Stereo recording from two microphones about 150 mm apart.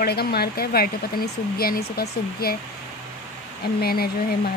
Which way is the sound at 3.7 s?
90° left.